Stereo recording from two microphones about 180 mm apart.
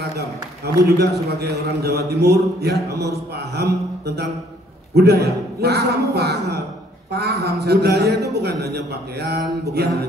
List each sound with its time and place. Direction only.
0.7 s a man's voice: 65° right (ahead or behind)
2.9 s a man's voice: 20° right (ahead or behind)
3.5 s a man's voice: 65° right (ahead or behind)